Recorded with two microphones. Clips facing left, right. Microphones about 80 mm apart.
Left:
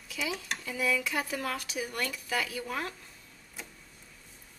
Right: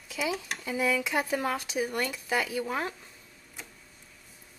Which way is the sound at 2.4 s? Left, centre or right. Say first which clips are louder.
Right 4 dB; centre.